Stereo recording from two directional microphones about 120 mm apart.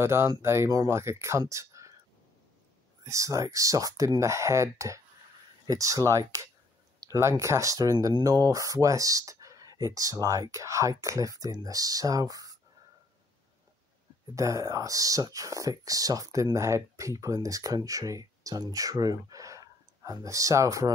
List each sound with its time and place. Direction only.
0.0 s speech: 20° right (ahead or behind)
3.1 s speech: 25° right (ahead or behind)
14.3 s speech: 25° right (ahead or behind)